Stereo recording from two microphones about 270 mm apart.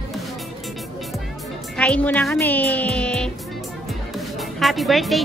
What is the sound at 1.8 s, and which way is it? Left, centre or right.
Speech, centre.